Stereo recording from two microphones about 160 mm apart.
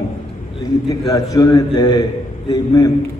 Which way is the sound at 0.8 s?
20° left (ahead or behind).